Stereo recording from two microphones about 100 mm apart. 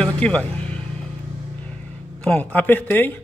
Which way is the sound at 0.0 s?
10° left (ahead or behind).